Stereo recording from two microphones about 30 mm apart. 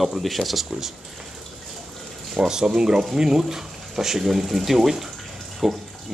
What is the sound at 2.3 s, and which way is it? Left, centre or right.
Speech, centre.